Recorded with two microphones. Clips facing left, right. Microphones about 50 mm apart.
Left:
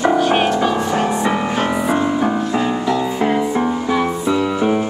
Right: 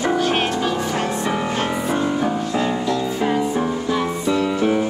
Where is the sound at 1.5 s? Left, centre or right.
Centre.